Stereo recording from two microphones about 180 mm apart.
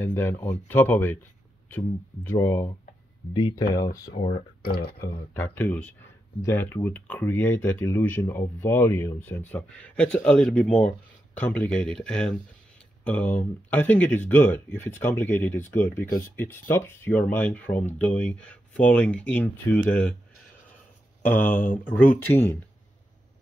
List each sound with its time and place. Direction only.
0.0 s speech: 10° left (ahead or behind)
3.3 s speech: 25° left (ahead or behind)
4.3 s speech: 60° left (ahead or behind)
5.0 s speech: 10° left (ahead or behind)
21.3 s speech: 10° left (ahead or behind)